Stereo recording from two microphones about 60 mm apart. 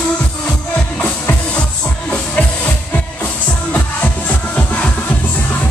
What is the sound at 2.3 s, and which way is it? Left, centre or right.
Music, left.